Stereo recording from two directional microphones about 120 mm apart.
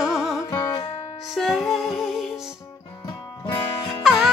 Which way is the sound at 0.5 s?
35° left (ahead or behind).